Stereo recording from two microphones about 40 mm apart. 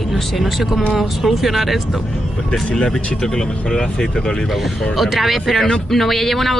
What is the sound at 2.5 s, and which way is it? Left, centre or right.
Speech, left.